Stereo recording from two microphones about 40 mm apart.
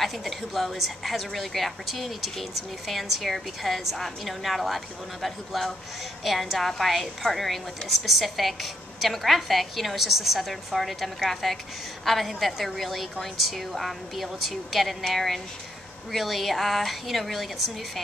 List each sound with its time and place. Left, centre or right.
0.0 s a woman's voice: centre